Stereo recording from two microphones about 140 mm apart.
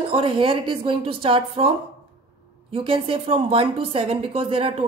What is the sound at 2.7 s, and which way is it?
A woman's voice, 40° right (ahead or behind).